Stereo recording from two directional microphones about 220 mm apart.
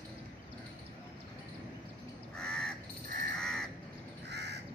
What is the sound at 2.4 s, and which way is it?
Crow, 5° left (ahead or behind).